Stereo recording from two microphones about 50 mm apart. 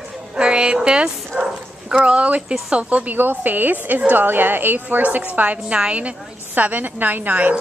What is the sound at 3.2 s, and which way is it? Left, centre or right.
A woman's voice, right.